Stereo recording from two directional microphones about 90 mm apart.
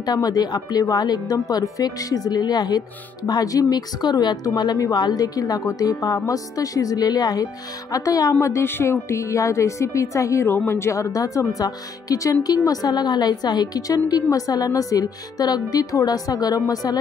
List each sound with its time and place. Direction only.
0.0 s a woman's voice: 45° left (ahead or behind)